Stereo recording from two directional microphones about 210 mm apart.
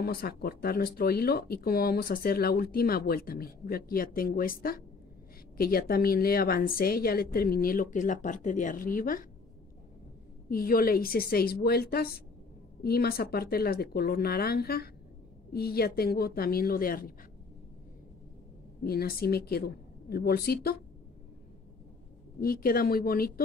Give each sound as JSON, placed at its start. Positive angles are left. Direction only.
{"t": 0.0, "sound": "speech", "side_deg": 45}
{"t": 10.5, "sound": "speech", "side_deg": 45}
{"t": 18.9, "sound": "speech", "side_deg": 45}
{"t": 22.4, "sound": "speech", "side_deg": 45}